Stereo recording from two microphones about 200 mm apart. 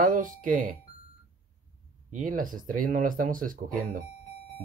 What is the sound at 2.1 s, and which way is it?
Speech, 45° right (ahead or behind).